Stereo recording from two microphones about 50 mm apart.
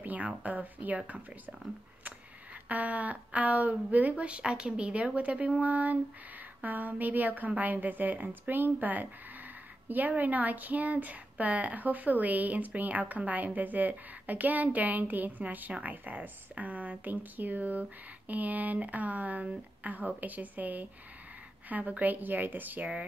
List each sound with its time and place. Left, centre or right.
0.0 s a sound: right
0.4 s speech: right
2.7 s a woman's voice: right